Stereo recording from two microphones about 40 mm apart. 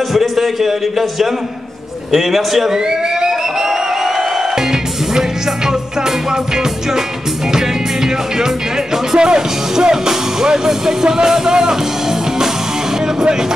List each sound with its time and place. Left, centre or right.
0.1 s a man's voice: centre
2.1 s music: centre
5.7 s music: centre
8.9 s speech: centre